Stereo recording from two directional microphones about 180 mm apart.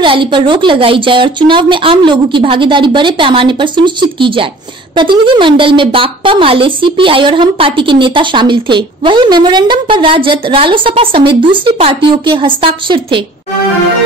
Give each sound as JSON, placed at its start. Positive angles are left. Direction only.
{"t": 0.0, "sound": "a woman's voice", "side_deg": -25}